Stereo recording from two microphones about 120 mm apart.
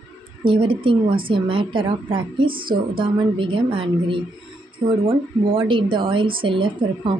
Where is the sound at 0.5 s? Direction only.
45° right (ahead or behind).